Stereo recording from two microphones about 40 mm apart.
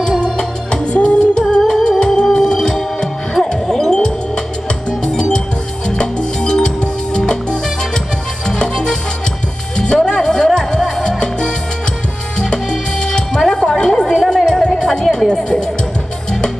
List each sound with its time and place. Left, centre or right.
0.2 s music: centre
8.5 s music: centre
10.0 s music: centre
13.4 s music: centre
13.8 s chatter: centre
14.3 s music: centre